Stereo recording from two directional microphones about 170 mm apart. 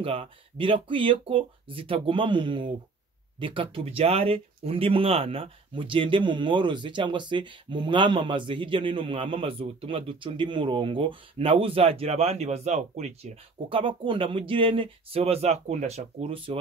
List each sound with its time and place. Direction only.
0.0 s speech: 35° right (ahead or behind)